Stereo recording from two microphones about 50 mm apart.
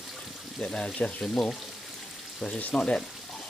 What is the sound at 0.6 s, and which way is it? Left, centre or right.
Speech, left.